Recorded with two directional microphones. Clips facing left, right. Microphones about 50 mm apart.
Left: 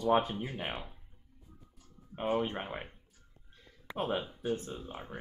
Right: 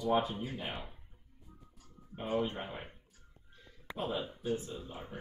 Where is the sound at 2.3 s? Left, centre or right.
Left.